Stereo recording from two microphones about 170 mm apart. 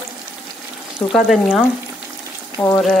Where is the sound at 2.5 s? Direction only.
15° left (ahead or behind).